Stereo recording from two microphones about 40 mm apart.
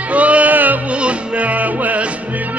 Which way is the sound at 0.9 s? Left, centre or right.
Right.